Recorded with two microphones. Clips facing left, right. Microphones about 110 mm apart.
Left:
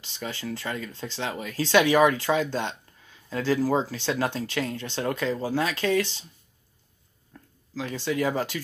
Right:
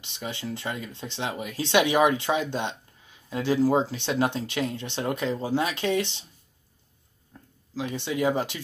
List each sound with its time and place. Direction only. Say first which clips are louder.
0.0 s speech: even; 25° right (ahead or behind)
7.3 s a sound: left 1 dB; 20° right (ahead or behind)
7.7 s speech: left 1 dB; 20° right (ahead or behind)